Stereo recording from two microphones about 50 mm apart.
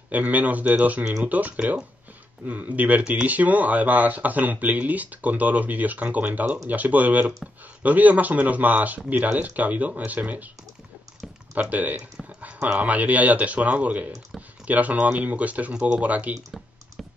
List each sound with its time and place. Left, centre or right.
0.1 s speech: right
11.7 s speech: right
12.4 s a sound: right
12.7 s speech: right
15.7 s speech: centre
16.0 s speech: right